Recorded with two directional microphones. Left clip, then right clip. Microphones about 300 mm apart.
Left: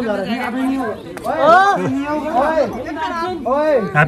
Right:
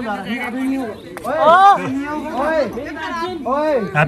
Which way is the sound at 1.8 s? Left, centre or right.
Centre.